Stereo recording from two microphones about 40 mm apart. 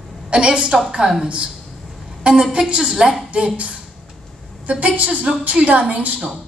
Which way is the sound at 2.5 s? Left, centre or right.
Right.